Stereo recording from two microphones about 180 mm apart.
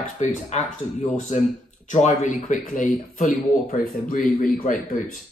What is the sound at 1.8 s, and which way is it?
Speech, 40° left (ahead or behind).